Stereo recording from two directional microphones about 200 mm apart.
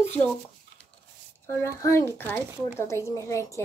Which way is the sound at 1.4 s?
15° left (ahead or behind).